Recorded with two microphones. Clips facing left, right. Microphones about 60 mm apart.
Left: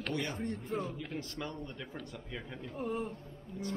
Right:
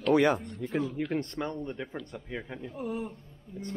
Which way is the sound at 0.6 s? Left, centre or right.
Right.